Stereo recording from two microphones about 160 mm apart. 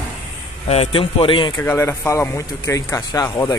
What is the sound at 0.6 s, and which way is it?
Speech, 35° left (ahead or behind).